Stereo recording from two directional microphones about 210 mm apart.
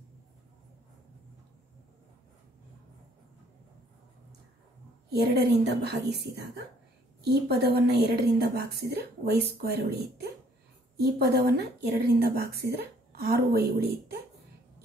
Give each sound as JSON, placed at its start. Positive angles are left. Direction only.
{"t": 5.1, "sound": "a woman's voice", "side_deg": -50}